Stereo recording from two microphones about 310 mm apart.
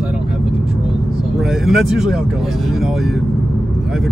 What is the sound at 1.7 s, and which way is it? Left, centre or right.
Speech, centre.